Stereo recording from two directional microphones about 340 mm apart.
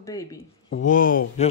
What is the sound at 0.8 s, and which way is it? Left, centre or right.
Speech, left.